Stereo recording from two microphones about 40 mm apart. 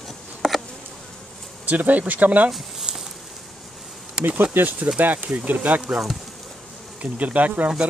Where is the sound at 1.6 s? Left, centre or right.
Right.